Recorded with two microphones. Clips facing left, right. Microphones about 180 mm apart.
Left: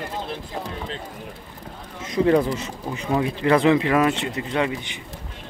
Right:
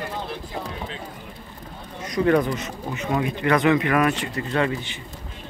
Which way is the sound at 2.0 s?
25° left (ahead or behind).